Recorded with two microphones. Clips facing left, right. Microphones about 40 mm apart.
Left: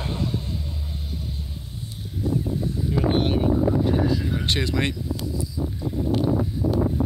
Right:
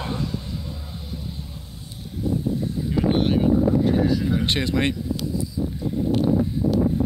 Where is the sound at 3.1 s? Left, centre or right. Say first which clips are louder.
Right 3 dB; centre.